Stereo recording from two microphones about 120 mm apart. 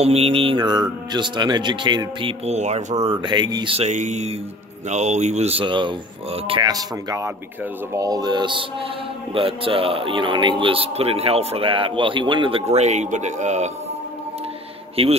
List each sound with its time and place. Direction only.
0.0 s a man's voice: 55° right (ahead or behind); by 2.3 s 40° right (ahead or behind)
2.4 s speech: 70° right (ahead or behind)
3.1 s speech: 40° right (ahead or behind)
3.7 s speech: 75° right (ahead or behind); by 6.6 s 50° right (ahead or behind)
6.6 s a man's voice: 30° right (ahead or behind); by 13.7 s 75° right (ahead or behind)
15.0 s a man's voice: 50° right (ahead or behind)